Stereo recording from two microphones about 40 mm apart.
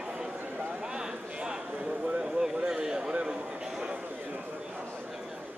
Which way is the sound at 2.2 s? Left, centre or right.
Centre.